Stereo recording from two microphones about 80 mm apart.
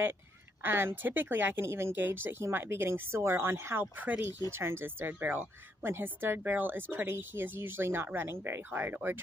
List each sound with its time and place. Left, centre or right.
0.6 s speech: right
3.8 s speech: right